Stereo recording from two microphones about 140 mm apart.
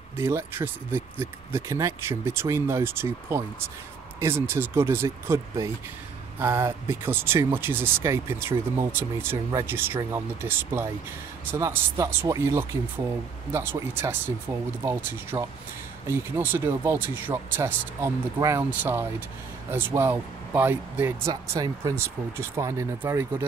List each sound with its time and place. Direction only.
0.2 s speech: 20° right (ahead or behind)
21.3 s speech: 25° right (ahead or behind)